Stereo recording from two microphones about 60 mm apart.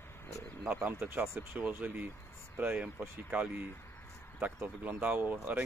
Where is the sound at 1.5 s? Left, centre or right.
Right.